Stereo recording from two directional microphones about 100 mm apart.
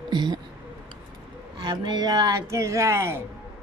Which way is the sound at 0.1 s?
45° right (ahead or behind).